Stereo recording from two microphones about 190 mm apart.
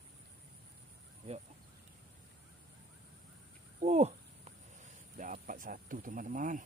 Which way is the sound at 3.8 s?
35° right (ahead or behind).